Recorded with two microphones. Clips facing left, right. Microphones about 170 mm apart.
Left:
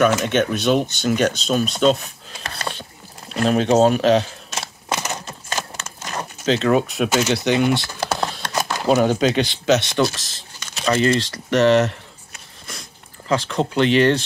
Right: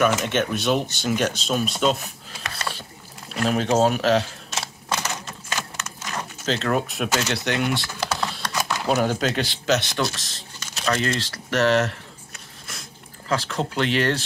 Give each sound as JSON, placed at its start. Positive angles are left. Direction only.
{"t": 0.0, "sound": "speech", "side_deg": -5}
{"t": 3.4, "sound": "speech", "side_deg": -5}
{"t": 5.5, "sound": "a sound", "side_deg": 35}
{"t": 6.4, "sound": "speech", "side_deg": 0}
{"t": 7.1, "sound": "speech", "side_deg": 10}
{"t": 7.3, "sound": "speech", "side_deg": 0}
{"t": 8.0, "sound": "typing", "side_deg": 40}
{"t": 8.4, "sound": "a sound", "side_deg": 35}
{"t": 8.9, "sound": "speech", "side_deg": 0}
{"t": 13.3, "sound": "speech", "side_deg": -5}